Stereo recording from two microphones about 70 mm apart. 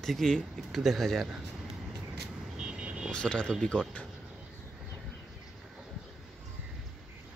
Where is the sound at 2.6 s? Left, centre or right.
Centre.